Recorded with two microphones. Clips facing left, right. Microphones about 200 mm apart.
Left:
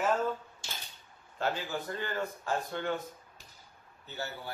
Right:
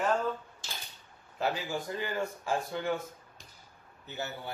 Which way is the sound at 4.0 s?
15° right (ahead or behind).